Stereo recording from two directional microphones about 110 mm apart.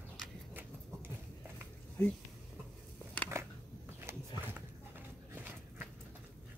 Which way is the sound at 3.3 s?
25° right (ahead or behind).